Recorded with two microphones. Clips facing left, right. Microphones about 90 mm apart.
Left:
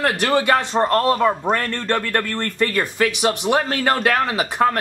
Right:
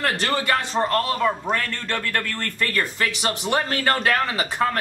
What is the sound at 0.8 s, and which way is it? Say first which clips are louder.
Speech: left 5 dB; 35° left (ahead or behind).